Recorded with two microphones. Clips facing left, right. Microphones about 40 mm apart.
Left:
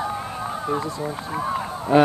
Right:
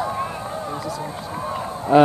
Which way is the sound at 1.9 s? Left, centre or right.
Left.